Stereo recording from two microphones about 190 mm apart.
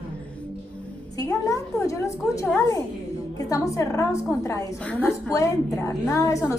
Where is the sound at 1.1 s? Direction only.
20° left (ahead or behind).